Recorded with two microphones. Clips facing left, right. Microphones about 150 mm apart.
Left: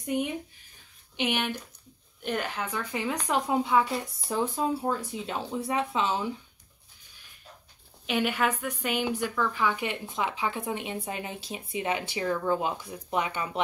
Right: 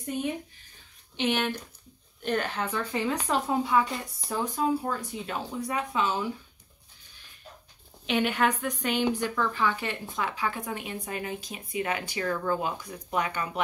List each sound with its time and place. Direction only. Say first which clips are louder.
1.1 s a woman's voice: right 2 dB; 10° left (ahead or behind)
8.1 s a woman's voice: right 1 dB; 5° left (ahead or behind); by 13.5 s 20° left (ahead or behind)